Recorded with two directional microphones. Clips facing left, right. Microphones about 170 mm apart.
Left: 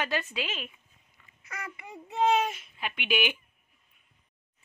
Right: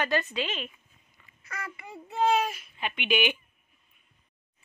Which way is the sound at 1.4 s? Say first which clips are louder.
Right 1 dB; 20° left (ahead or behind).